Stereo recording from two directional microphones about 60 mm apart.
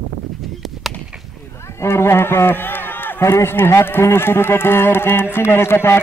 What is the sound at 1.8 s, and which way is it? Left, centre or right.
A man's voice, left.